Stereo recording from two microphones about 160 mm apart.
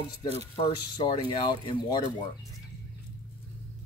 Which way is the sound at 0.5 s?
30° left (ahead or behind).